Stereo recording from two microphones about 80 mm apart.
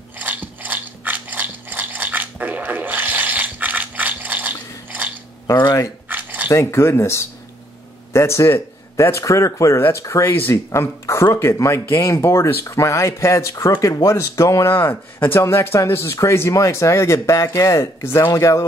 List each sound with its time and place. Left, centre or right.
0.2 s ratchet: right
6.0 s a sound: right
6.5 s speech: left